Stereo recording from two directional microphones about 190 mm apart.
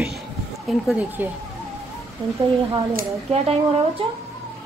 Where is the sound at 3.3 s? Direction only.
30° right (ahead or behind).